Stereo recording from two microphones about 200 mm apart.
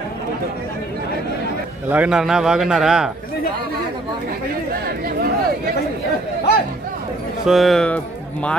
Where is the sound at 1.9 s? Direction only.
5° right (ahead or behind).